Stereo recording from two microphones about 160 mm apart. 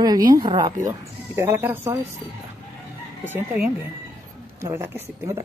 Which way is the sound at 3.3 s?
10° right (ahead or behind).